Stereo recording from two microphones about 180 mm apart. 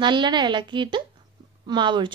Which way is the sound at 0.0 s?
25° right (ahead or behind).